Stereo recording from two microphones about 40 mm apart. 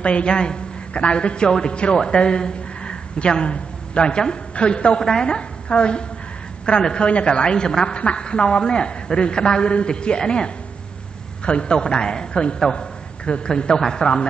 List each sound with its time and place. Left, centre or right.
0.0 s a woman's voice: left
12.7 s a sound: left
13.5 s a woman's voice: centre